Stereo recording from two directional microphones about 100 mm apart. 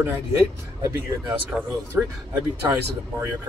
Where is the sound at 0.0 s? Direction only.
25° right (ahead or behind).